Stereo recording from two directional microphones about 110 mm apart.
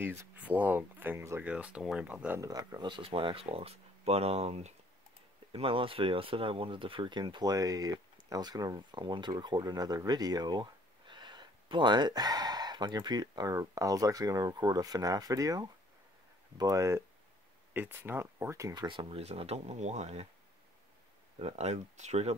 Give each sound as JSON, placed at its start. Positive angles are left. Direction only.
{"t": 0.0, "sound": "speech", "side_deg": -25}
{"t": 1.4, "sound": "speech", "side_deg": -10}
{"t": 2.4, "sound": "speech", "side_deg": -35}
{"t": 5.5, "sound": "speech", "side_deg": -55}
{"t": 17.7, "sound": "speech", "side_deg": -20}
{"t": 21.4, "sound": "speech", "side_deg": -75}